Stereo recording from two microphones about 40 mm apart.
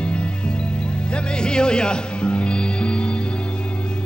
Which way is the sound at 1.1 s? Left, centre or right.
Left.